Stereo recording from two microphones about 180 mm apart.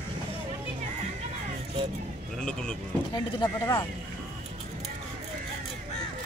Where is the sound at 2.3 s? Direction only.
5° left (ahead or behind).